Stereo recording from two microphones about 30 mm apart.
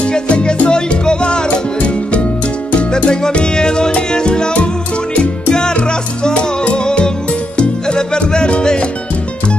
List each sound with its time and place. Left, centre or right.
0.3 s music: left
5.5 s music: left